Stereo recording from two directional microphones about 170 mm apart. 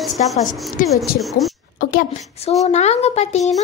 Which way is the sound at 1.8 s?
55° left (ahead or behind).